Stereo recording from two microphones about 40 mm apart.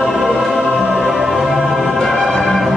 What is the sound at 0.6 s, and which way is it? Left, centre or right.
Music, right.